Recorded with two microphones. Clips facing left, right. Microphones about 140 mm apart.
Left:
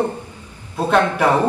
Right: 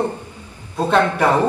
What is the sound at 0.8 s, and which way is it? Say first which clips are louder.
Speech: even; 10° left (ahead or behind).